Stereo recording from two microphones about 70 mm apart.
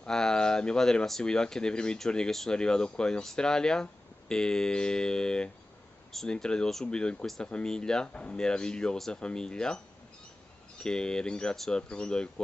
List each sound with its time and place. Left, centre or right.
0.0 s speech: centre
10.8 s speech: centre